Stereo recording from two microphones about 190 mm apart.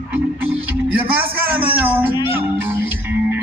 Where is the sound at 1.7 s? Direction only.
10° right (ahead or behind).